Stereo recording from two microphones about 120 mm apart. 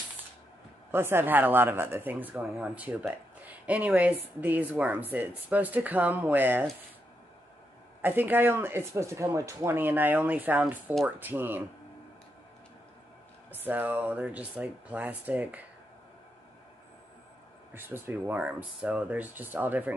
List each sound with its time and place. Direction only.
0.9 s speech: 20° right (ahead or behind)
8.0 s speech: 15° right (ahead or behind)
13.6 s speech: 15° right (ahead or behind)
17.7 s speech: 20° right (ahead or behind)